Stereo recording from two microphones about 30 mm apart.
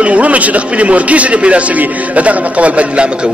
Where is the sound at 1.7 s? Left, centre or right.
Right.